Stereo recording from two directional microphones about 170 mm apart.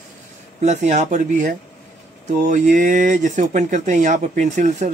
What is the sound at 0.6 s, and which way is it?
Speech, 45° right (ahead or behind).